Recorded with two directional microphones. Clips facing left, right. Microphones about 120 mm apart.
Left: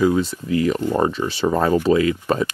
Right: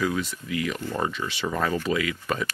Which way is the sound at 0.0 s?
30° left (ahead or behind).